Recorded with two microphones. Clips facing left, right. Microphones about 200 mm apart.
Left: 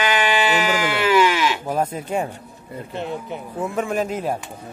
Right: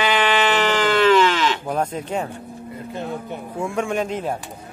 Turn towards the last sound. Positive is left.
turn(degrees=5)  # may be behind; listen again after turning